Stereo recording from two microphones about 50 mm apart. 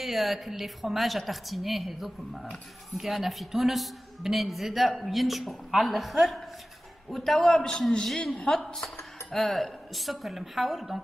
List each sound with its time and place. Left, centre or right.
0.0 s a woman's voice: centre